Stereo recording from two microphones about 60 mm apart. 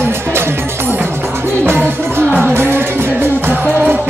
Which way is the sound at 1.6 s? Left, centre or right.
Right.